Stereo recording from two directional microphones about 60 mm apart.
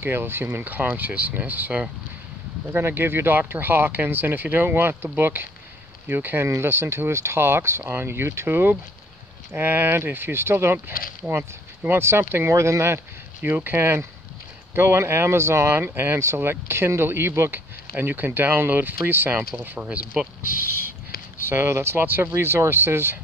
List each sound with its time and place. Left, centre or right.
0.0 s speech: right
2.7 s speech: right
6.4 s speech: right
11.3 s speech: right
11.9 s speech: right
13.4 s speech: right
19.8 s speech: centre
21.5 s speech: right